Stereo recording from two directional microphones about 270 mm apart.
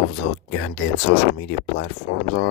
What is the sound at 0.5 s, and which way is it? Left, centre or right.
Speech, left.